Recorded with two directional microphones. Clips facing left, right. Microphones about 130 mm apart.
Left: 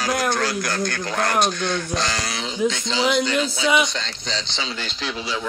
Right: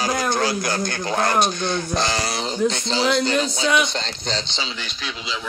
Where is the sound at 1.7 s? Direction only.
30° right (ahead or behind).